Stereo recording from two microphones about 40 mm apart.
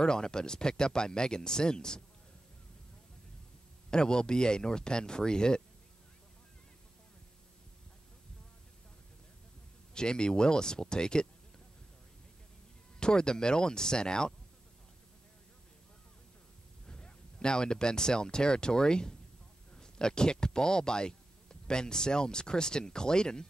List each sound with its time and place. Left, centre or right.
0.0 s speech: centre
3.9 s speech: centre
9.9 s speech: centre
13.0 s speech: left
16.8 s speech: left